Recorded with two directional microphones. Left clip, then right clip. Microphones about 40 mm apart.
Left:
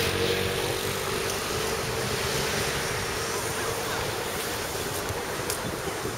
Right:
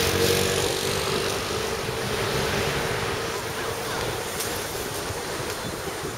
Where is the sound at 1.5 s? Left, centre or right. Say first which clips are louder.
Right 1 dB; centre.